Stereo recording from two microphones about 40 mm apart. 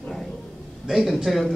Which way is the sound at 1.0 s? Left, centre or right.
Centre.